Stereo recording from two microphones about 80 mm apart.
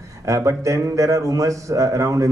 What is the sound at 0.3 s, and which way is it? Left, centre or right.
A man's voice, right.